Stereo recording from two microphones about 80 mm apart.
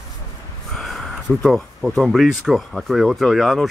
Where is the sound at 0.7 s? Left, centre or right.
Centre.